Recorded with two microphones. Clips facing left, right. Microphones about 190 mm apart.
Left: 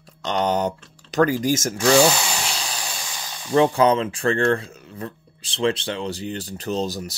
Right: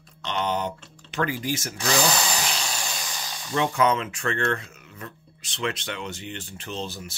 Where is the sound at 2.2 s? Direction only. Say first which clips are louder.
Left 1 dB; 10° left (ahead or behind).